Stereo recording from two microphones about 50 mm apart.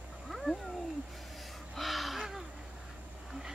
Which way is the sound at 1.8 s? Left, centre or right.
Centre.